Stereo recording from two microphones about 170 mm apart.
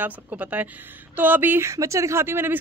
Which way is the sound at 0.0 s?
10° right (ahead or behind).